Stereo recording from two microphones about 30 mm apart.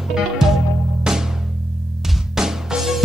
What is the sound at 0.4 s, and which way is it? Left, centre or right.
Music, centre.